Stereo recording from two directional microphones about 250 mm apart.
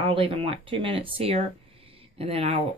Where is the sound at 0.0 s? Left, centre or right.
Right.